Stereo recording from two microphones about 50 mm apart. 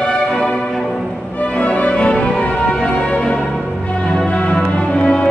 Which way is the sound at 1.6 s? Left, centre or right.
Left.